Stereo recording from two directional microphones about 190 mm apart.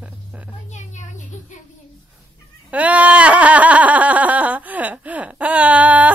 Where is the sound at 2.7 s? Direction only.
10° right (ahead or behind).